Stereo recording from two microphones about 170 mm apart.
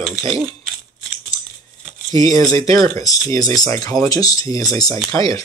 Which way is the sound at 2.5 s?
20° left (ahead or behind).